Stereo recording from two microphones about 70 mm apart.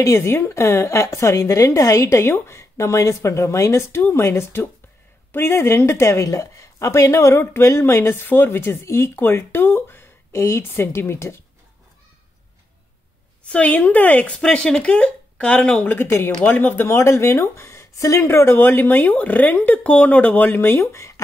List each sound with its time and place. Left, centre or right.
0.0 s a woman's voice: left
13.5 s speech: left
14.4 s speech: centre
15.8 s a woman's voice: left
16.8 s a woman's voice: left
18.2 s speech: left